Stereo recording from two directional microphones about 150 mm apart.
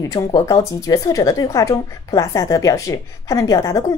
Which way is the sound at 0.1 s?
25° left (ahead or behind).